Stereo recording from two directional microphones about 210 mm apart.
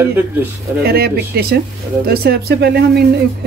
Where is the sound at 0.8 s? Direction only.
45° right (ahead or behind).